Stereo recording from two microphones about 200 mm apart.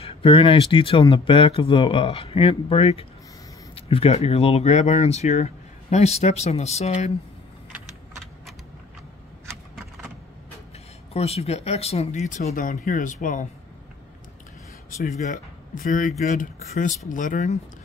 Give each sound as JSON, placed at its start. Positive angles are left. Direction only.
{"t": 0.0, "sound": "speech", "side_deg": 25}
{"t": 11.1, "sound": "speech", "side_deg": 30}
{"t": 15.1, "sound": "speech", "side_deg": 40}